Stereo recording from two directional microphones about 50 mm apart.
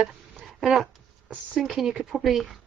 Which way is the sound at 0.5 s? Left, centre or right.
Centre.